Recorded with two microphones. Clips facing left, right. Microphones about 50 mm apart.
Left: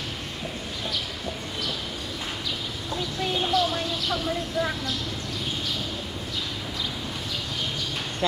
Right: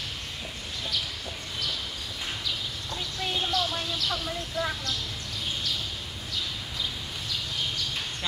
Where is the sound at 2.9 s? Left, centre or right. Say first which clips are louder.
Left 5 dB; centre.